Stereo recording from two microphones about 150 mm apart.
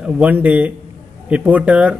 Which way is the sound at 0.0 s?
10° right (ahead or behind).